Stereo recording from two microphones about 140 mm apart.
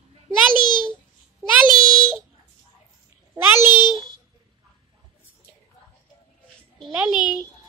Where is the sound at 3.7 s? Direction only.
30° left (ahead or behind).